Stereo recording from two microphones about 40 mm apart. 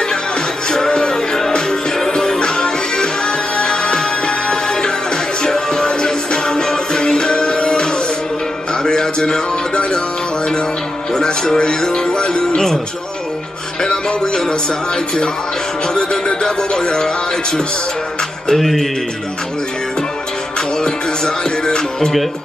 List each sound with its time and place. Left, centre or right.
0.7 s music: centre
5.4 s music: centre
11.1 s music: centre
13.8 s music: centre
15.9 s music: centre
18.5 s music: centre
21.6 s music: centre